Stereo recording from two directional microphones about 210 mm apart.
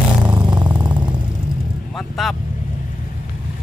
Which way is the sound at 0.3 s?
20° right (ahead or behind).